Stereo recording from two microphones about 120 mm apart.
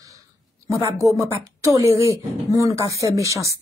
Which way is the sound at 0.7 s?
25° right (ahead or behind).